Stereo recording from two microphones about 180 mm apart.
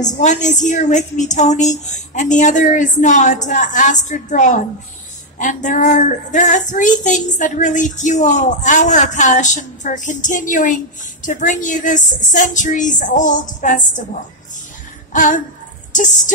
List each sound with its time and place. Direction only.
0.2 s female singing: 40° left (ahead or behind)
15.1 s female singing: 45° left (ahead or behind)